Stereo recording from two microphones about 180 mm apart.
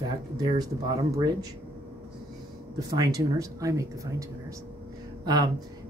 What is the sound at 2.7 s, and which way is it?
Speech, 20° right (ahead or behind).